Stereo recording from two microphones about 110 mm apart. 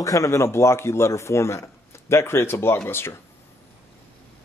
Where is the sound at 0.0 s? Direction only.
30° left (ahead or behind).